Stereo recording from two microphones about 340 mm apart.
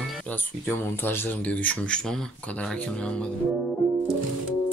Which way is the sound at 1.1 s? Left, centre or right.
Centre.